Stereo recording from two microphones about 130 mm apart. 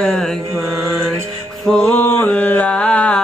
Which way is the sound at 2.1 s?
10° left (ahead or behind).